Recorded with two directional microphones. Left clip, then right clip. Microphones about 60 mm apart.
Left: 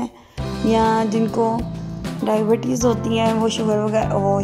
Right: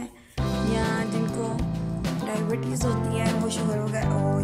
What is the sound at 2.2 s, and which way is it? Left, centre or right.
Speech, left.